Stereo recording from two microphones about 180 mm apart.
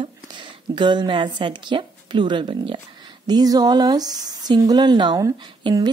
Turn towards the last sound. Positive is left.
turn(degrees=-25)  # may be behind; listen again after turning